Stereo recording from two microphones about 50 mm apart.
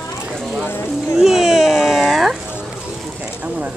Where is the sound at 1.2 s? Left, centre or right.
Centre.